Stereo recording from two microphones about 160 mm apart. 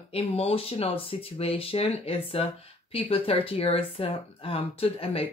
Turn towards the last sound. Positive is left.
turn(degrees=35)  # may be behind; listen again after turning